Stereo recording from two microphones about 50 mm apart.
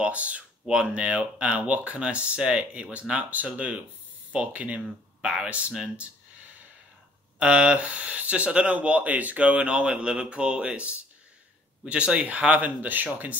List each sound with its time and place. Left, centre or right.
0.0 s speech: right
7.3 s speech: right
12.6 s speech: right